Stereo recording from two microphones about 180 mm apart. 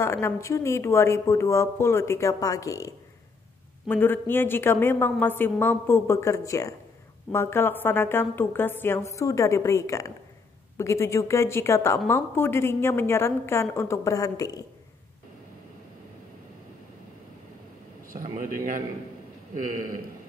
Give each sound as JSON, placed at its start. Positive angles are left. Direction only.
{"t": 0.0, "sound": "speech", "side_deg": 15}
{"t": 3.9, "sound": "speech", "side_deg": 10}
{"t": 18.1, "sound": "speech", "side_deg": -50}